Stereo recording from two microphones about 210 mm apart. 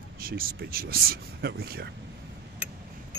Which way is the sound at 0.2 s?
45° right (ahead or behind).